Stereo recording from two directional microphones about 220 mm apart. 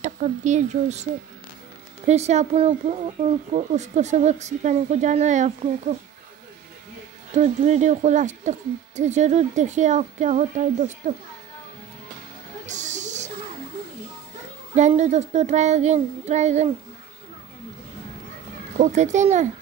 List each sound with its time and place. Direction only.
0.0 s speech: 35° right (ahead or behind)
2.0 s speech: 30° right (ahead or behind)
7.3 s speech: 30° right (ahead or behind)
12.6 s a sound: 35° right (ahead or behind)
14.8 s speech: 30° right (ahead or behind)
18.8 s speech: 30° right (ahead or behind)